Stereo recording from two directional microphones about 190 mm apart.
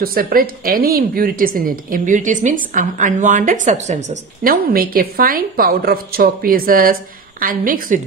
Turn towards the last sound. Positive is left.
turn(degrees=-45)  # may be behind; listen again after turning